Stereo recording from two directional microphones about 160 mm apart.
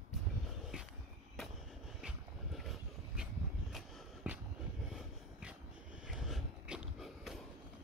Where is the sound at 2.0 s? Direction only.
5° right (ahead or behind).